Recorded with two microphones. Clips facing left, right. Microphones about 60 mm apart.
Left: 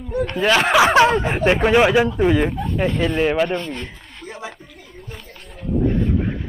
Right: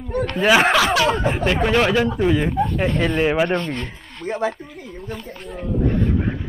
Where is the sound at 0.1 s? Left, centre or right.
Right.